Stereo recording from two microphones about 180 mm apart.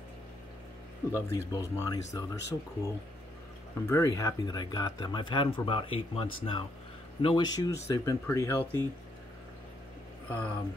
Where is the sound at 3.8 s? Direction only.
15° left (ahead or behind).